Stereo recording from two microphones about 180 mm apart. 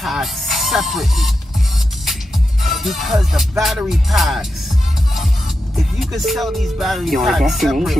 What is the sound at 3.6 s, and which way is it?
Speech, centre (ahead or behind).